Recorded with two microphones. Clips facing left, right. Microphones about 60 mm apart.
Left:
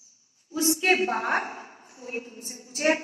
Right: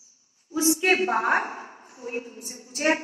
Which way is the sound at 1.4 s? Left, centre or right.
Right.